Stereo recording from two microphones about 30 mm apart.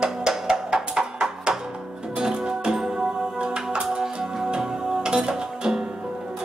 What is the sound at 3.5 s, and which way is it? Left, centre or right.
Music, right.